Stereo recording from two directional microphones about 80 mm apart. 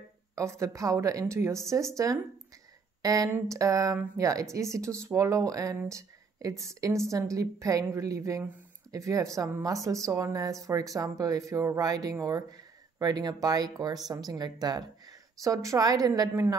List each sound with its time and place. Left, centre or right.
0.4 s speech: right
3.0 s speech: right
5.9 s a sound: right
6.6 s speech: right